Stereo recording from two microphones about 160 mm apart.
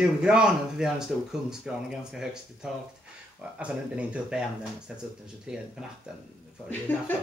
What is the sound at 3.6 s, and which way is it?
Speech, 5° right (ahead or behind).